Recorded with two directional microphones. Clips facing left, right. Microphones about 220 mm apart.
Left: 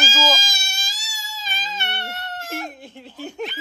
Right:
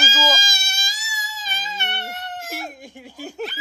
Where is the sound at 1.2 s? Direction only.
20° right (ahead or behind).